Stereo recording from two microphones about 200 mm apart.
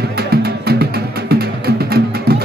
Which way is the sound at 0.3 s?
55° right (ahead or behind).